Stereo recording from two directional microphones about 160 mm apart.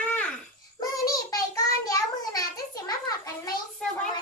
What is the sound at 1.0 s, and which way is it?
Child singing, 25° left (ahead or behind).